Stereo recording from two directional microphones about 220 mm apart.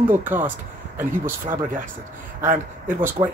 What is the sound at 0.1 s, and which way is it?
Speech, 10° right (ahead or behind).